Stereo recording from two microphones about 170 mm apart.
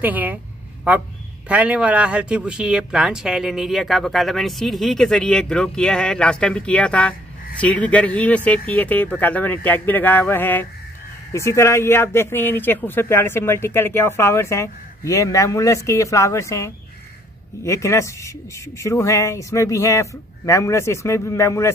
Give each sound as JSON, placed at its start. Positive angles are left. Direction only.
{"t": 0.0, "sound": "speech", "side_deg": -10}